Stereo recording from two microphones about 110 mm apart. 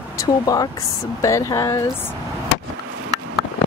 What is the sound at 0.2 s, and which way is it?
Speech, 35° left (ahead or behind).